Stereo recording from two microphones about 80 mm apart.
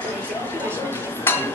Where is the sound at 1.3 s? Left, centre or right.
Left.